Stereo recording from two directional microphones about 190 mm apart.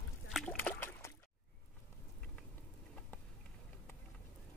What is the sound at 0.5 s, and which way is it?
Trickle, 10° left (ahead or behind).